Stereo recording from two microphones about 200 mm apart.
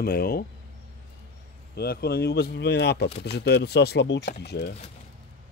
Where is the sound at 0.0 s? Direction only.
50° left (ahead or behind).